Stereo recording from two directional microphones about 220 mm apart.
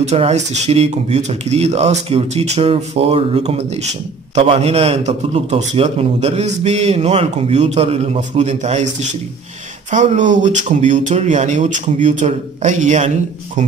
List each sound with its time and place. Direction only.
0.0 s a man's voice: 30° right (ahead or behind)
9.8 s speech: 35° right (ahead or behind)